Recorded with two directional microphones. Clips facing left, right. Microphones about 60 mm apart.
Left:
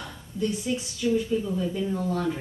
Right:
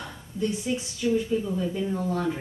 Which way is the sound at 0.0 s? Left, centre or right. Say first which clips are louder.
Even; right.